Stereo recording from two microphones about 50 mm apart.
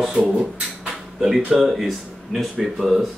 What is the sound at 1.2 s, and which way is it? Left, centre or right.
Speech, centre.